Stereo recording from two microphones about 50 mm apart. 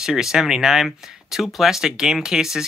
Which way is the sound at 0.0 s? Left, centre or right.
Centre.